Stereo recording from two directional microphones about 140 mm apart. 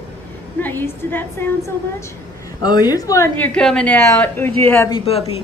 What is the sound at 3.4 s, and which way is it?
Speech, 5° left (ahead or behind).